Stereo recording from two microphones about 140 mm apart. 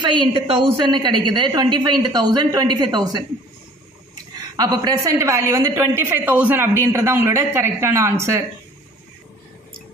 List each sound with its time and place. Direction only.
0.0 s a woman's voice: 35° right (ahead or behind)
4.4 s a woman's voice: 25° right (ahead or behind)